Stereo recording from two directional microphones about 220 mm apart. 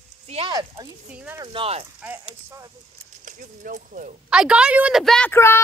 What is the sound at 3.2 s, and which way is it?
Speech, 35° right (ahead or behind).